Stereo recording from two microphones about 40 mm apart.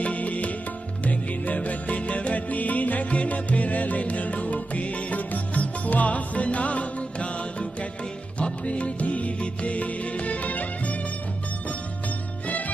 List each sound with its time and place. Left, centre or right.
0.0 s music: left
12.4 s music: left